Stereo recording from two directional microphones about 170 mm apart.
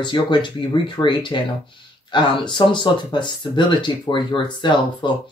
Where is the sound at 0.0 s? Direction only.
25° left (ahead or behind).